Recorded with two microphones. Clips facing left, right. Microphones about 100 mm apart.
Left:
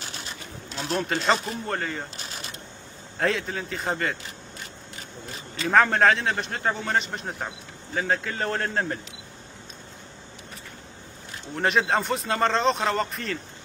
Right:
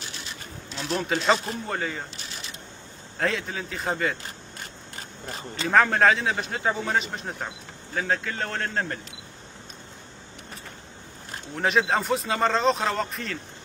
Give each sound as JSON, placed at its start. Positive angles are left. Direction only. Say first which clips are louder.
{"t": 0.8, "sound": "a man's voice", "louder": "right 1 dB", "side_deg": 0}
{"t": 3.2, "sound": "a man's voice", "louder": "left 2 dB", "side_deg": 0}
{"t": 5.7, "sound": "a man's voice", "louder": "even", "side_deg": 0}
{"t": 11.5, "sound": "a man's voice", "louder": "even", "side_deg": 0}